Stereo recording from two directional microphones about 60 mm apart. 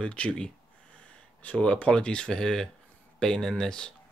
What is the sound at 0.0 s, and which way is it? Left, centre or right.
Speech, centre.